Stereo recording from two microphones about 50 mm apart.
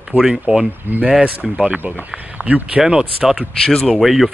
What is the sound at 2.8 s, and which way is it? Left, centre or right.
Speech, centre.